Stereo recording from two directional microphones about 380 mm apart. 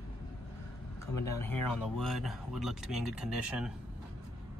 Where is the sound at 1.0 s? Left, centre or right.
Centre.